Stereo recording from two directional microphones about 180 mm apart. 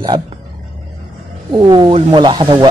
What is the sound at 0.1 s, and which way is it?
Speech, 25° right (ahead or behind).